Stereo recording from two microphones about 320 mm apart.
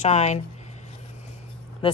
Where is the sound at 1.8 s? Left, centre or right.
Centre.